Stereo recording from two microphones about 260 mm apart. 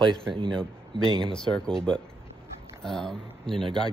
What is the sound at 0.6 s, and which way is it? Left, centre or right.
Speech, centre.